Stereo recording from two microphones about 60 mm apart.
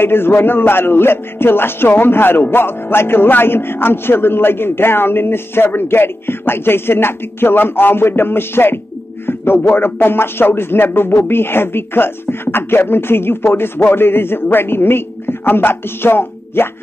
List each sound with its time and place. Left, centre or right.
0.0 s a man's voice: left